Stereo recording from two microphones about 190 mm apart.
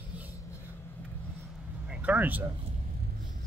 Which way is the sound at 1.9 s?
10° right (ahead or behind).